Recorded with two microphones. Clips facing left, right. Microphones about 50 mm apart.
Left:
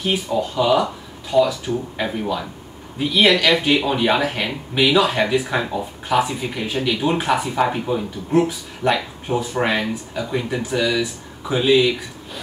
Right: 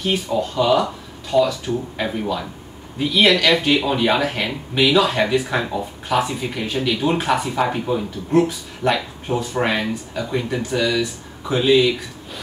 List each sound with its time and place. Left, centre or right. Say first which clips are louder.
0.0 s speech: even; centre